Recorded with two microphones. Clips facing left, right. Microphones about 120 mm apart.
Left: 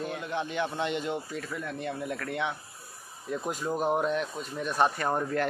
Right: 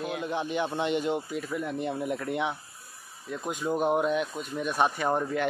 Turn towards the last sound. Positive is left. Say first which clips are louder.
# right 1 dB
turn(degrees=0)  # may be behind; listen again after turning